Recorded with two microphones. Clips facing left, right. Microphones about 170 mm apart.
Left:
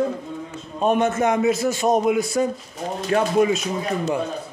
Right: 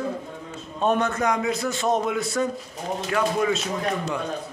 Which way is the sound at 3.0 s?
30° left (ahead or behind).